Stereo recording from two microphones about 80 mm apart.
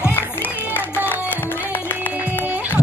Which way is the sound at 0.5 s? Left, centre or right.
Right.